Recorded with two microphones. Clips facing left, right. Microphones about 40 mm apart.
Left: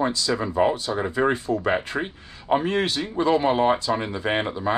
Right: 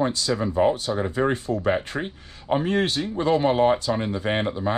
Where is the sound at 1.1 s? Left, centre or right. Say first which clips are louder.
Left 3 dB; left.